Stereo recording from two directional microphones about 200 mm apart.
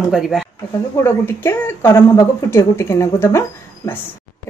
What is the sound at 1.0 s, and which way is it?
A woman's voice, 10° left (ahead or behind).